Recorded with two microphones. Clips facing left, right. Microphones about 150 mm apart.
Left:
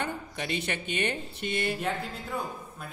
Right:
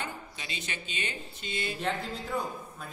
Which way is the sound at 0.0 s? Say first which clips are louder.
Left 6 dB; 55° left (ahead or behind).